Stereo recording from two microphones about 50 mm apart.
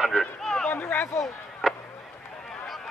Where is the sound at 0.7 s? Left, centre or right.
Left.